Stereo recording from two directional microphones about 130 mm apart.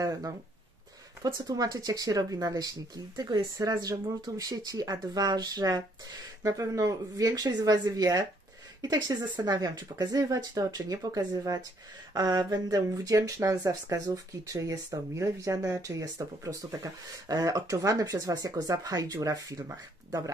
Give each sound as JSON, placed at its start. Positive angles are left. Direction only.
{"t": 0.0, "sound": "speech", "side_deg": -30}